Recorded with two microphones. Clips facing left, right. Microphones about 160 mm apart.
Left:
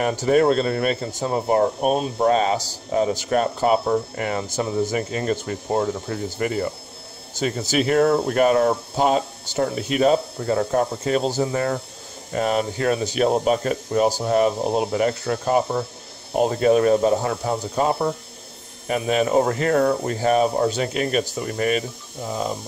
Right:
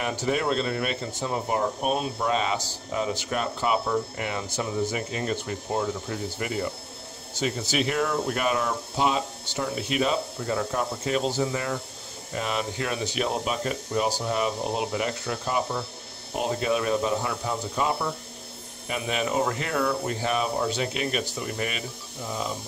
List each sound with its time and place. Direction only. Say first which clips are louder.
0.0 s speech: left 9 dB; 45° left (ahead or behind)
7.3 s speech: left 5 dB; 45° left (ahead or behind)